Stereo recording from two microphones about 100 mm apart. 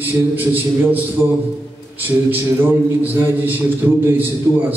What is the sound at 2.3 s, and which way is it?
A man's voice, 20° right (ahead or behind).